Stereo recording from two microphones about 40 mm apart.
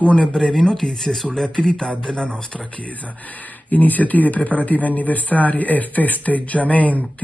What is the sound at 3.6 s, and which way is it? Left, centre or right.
A man's voice, left.